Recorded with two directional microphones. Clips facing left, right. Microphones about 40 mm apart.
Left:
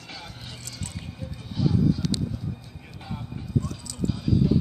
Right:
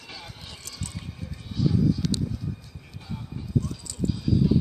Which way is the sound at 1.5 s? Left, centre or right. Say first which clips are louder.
Even; centre.